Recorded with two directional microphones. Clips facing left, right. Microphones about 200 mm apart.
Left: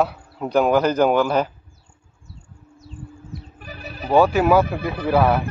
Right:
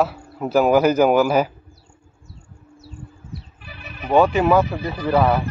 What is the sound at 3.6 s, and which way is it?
Music, 40° left (ahead or behind).